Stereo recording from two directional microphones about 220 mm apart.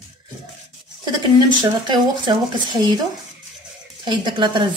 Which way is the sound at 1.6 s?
20° right (ahead or behind).